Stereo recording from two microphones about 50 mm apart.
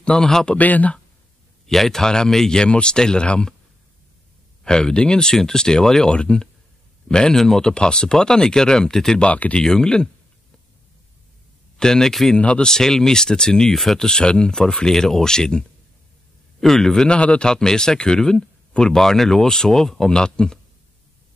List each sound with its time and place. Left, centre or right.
0.1 s speech: centre
0.6 s speech: left
1.7 s speech: centre
4.6 s speech: centre
9.2 s speech: left
9.6 s speech: centre
11.8 s speech: centre
12.4 s speech: left
12.6 s speech: centre